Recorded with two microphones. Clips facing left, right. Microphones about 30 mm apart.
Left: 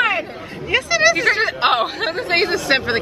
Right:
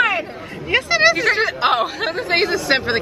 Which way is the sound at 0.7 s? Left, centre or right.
Centre.